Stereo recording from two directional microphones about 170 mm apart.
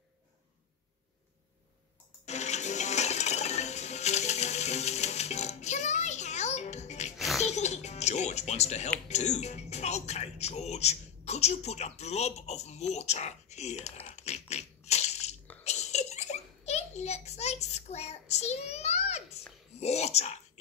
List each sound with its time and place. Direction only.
2.2 s music: 40° left (ahead or behind)
7.2 s music: centre (ahead or behind)
7.4 s music: 40° left (ahead or behind)
9.0 s speech: 40° left (ahead or behind)
15.6 s a sound: 40° left (ahead or behind)
19.8 s speech: 40° left (ahead or behind)